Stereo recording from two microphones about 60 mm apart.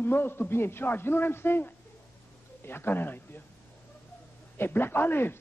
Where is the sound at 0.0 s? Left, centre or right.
Left.